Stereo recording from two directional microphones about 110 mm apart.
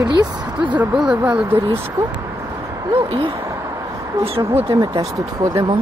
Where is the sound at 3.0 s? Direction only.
60° right (ahead or behind).